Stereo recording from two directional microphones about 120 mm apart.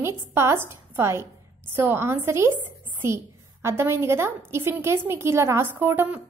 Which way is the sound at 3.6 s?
20° right (ahead or behind).